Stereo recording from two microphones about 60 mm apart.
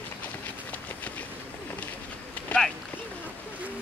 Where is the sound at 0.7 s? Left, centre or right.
Left.